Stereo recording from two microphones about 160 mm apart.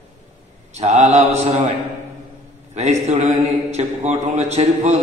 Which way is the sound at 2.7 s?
45° right (ahead or behind).